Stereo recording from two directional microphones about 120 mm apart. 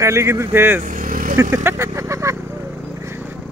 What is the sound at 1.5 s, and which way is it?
Vehicle, 20° right (ahead or behind).